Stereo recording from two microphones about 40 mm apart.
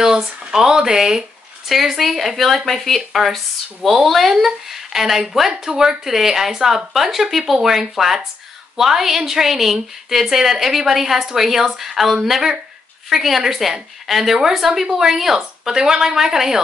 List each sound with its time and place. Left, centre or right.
0.0 s a woman's voice: centre
1.7 s a woman's voice: centre